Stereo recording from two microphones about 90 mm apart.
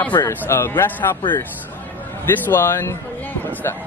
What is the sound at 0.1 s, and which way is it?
Speech, 50° left (ahead or behind).